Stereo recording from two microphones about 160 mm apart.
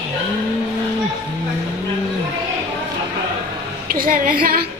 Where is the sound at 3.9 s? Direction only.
60° right (ahead or behind).